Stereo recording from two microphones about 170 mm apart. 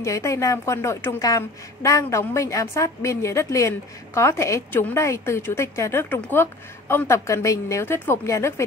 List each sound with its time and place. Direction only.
0.0 s a woman's voice: 15° left (ahead or behind)